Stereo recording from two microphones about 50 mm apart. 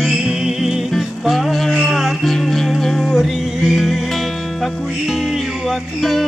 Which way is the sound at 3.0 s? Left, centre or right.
Centre.